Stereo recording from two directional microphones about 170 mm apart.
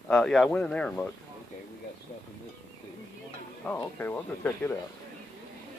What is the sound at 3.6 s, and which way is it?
Speech, 10° left (ahead or behind).